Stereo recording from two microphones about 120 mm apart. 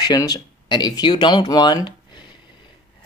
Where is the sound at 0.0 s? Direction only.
35° left (ahead or behind).